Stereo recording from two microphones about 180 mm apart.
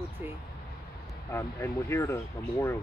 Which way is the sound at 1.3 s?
15° left (ahead or behind).